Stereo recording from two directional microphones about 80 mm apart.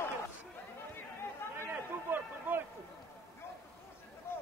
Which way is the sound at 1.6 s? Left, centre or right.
Right.